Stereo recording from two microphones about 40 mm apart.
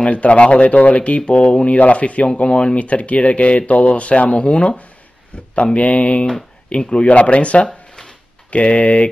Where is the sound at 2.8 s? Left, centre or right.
Left.